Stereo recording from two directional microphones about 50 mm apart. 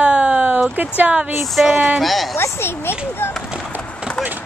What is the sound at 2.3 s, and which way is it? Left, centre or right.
A child's voice, left.